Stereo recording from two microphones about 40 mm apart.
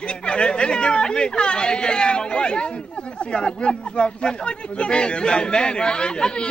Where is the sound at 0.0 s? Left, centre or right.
Left.